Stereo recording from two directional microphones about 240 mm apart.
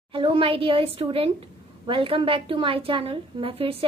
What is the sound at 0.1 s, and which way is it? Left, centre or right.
A woman's voice, right.